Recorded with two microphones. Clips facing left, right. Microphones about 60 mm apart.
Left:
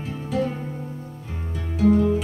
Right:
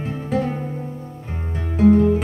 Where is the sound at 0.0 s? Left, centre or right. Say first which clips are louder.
Right 3 dB; right.